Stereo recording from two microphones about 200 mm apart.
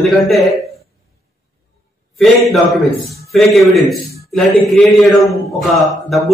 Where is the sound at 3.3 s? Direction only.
Centre (ahead or behind).